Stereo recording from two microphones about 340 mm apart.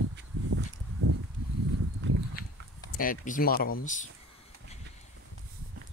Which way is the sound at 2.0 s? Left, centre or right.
Right.